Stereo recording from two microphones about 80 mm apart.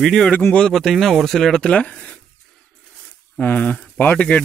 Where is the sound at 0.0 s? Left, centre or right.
Centre.